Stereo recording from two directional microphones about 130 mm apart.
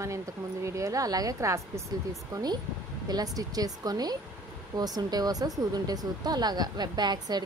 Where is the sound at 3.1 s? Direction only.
30° right (ahead or behind).